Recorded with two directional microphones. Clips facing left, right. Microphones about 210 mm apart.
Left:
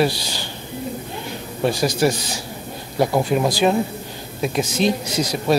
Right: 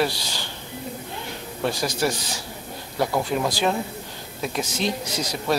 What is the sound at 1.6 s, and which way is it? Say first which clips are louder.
Speech: left 6 dB; 10° left (ahead or behind).